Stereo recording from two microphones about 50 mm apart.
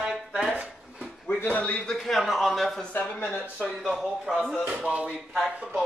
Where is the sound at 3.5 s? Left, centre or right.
Centre.